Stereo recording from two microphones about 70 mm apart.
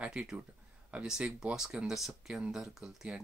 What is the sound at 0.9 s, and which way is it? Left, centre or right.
Speech, centre.